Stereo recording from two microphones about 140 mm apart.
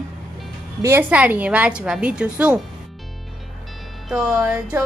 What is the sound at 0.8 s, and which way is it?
A woman's voice, 15° right (ahead or behind).